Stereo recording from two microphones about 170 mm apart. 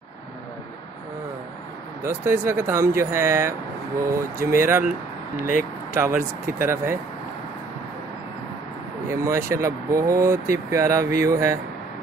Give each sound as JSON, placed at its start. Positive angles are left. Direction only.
{"t": 2.0, "sound": "speech", "side_deg": -15}
{"t": 5.9, "sound": "speech", "side_deg": -10}
{"t": 9.1, "sound": "speech", "side_deg": -15}